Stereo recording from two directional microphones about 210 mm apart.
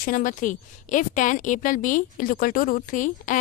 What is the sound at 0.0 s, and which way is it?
A woman's voice, 40° left (ahead or behind).